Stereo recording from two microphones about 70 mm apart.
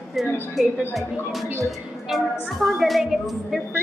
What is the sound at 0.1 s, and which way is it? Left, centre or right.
Speech, centre.